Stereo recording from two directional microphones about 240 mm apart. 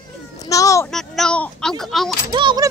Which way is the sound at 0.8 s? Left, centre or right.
Centre.